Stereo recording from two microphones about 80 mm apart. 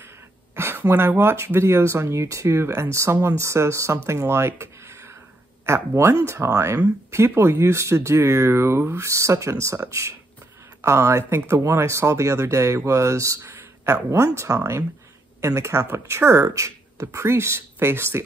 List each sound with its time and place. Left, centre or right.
0.6 s speech: right